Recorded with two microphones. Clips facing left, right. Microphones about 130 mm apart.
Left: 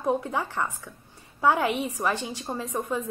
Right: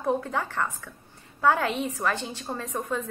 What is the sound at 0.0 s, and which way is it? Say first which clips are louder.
A woman's voice: left 1 dB; 15° left (ahead or behind).